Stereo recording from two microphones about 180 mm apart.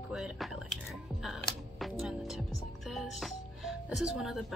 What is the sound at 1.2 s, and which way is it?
Music, centre (ahead or behind).